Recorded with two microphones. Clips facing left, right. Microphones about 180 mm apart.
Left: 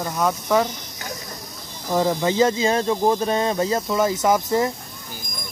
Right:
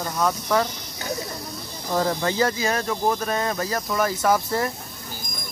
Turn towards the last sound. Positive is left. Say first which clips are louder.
# left 3 dB
turn(degrees=20)  # may be behind; listen again after turning